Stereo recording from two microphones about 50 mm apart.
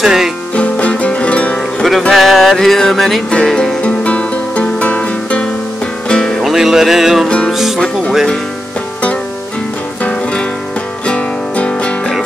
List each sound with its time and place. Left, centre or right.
0.0 s music: centre
0.6 s music: left
1.8 s music: centre
3.3 s speech: centre
3.8 s music: left
6.4 s music: centre
7.2 s music: centre
7.5 s music: centre
11.1 s music: left